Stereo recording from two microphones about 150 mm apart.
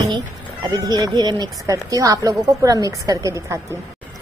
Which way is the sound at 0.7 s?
25° right (ahead or behind).